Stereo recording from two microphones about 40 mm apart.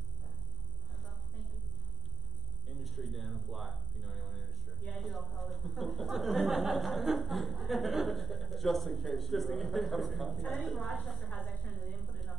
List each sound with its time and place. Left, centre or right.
2.8 s speech: centre
11.2 s speech: centre
11.7 s a woman's voice: centre